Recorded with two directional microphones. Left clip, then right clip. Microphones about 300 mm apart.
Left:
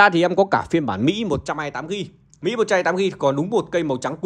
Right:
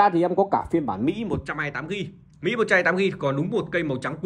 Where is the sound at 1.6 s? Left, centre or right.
Centre.